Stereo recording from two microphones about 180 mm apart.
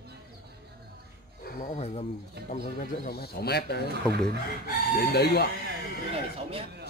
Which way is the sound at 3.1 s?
60° left (ahead or behind).